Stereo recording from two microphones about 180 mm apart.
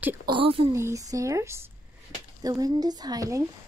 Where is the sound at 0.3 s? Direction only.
30° right (ahead or behind).